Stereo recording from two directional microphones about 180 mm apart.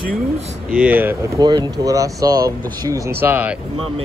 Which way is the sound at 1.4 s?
20° right (ahead or behind).